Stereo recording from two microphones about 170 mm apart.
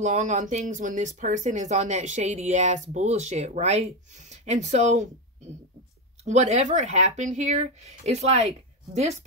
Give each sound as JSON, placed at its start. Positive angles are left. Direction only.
{"t": 0.0, "sound": "speech", "side_deg": -45}
{"t": 6.2, "sound": "speech", "side_deg": -40}